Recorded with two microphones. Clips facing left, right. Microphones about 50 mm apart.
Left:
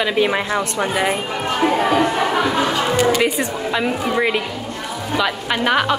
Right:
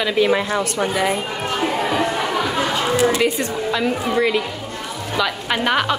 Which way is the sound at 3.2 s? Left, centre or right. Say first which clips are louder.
Left 1 dB; centre.